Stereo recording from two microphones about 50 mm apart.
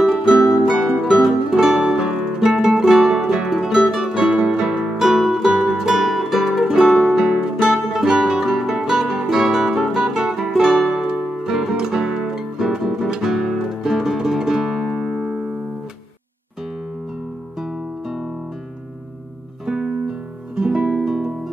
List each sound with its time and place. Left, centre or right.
0.0 s music: centre
19.6 s music: centre